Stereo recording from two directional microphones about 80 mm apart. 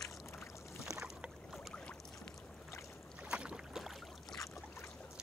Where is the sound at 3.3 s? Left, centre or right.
Centre.